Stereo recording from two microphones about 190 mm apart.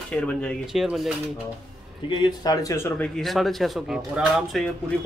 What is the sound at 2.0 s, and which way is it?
Speech, 20° left (ahead or behind).